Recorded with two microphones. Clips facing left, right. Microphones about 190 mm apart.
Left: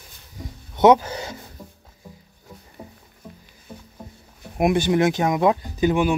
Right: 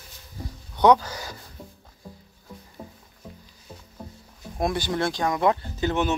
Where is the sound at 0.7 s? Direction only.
20° left (ahead or behind).